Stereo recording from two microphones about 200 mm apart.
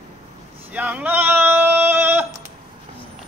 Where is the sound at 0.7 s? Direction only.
10° right (ahead or behind).